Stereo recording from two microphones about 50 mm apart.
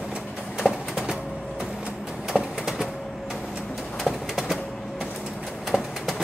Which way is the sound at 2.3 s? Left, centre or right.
Centre.